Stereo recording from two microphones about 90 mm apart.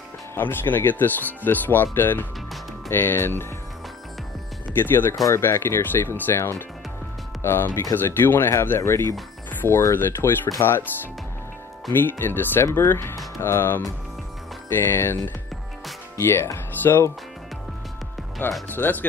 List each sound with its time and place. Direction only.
0.3 s speech: 25° left (ahead or behind)
4.7 s speech: 25° left (ahead or behind)
9.5 s music: 25° left (ahead or behind)
9.9 s speech: 25° left (ahead or behind)
11.9 s speech: 25° left (ahead or behind)
16.2 s speech: 30° left (ahead or behind)
18.4 s speech: 20° left (ahead or behind)